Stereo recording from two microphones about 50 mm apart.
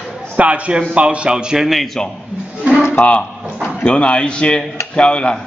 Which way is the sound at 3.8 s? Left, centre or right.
Left.